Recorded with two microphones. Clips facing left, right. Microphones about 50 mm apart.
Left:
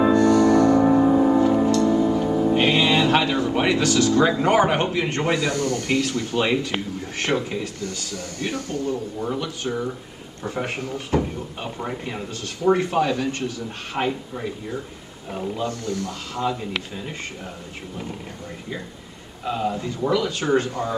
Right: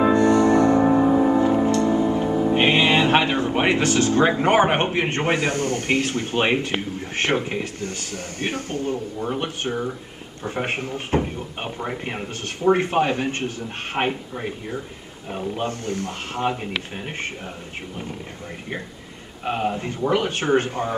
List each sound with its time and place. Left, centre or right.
0.0 s music: right
0.8 s music: centre
1.7 s music: right
2.2 s music: centre
2.5 s speech: right
15.3 s speech: right
19.4 s speech: right